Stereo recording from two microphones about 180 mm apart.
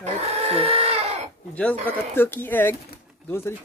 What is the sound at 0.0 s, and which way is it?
Goat, 35° right (ahead or behind).